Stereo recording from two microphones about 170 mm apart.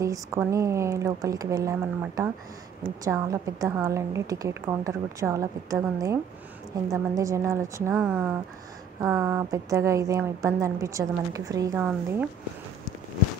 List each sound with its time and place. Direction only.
0.0 s a woman's voice: 15° right (ahead or behind)